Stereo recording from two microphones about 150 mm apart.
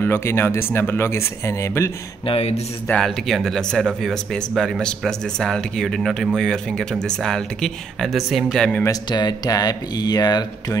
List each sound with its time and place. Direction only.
0.0 s speech: 15° left (ahead or behind)
2.2 s speech: 45° left (ahead or behind)
2.9 s speech: centre (ahead or behind)
8.8 s speech: 30° left (ahead or behind)